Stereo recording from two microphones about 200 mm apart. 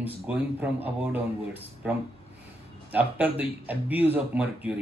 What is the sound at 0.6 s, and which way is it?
Speech, 10° right (ahead or behind).